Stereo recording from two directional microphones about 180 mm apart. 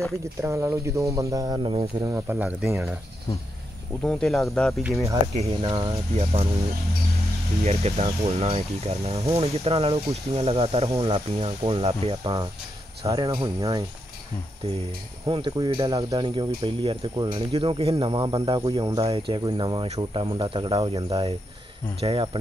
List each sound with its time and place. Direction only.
0.4 s speech: 15° right (ahead or behind)
2.0 s speech: 15° right (ahead or behind)
4.0 s speech: 5° left (ahead or behind)
5.3 s speech: 35° right (ahead or behind)
7.6 s speech: 35° right (ahead or behind); by 13.8 s 20° right (ahead or behind)
15.2 s speech: 30° right (ahead or behind)